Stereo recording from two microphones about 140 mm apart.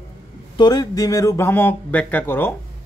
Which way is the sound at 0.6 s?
30° left (ahead or behind).